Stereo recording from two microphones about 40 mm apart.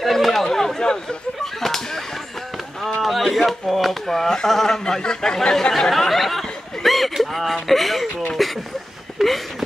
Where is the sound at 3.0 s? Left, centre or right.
Centre.